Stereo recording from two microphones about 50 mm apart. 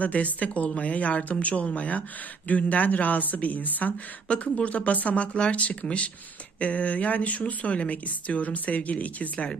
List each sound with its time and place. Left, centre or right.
0.0 s speech: left